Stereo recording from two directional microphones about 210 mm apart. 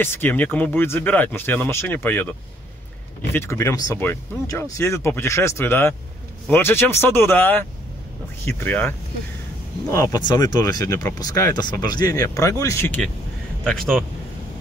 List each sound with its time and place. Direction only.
0.0 s speech: 10° left (ahead or behind)